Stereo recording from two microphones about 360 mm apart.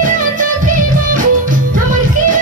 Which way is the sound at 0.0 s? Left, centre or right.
Right.